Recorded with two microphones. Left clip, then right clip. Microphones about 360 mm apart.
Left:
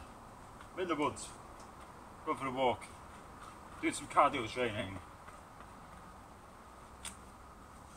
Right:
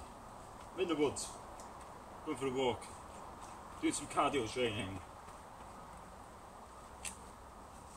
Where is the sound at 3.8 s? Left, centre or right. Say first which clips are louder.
Left 5 dB; centre.